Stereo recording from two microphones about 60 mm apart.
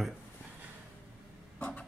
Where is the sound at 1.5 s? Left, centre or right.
Left.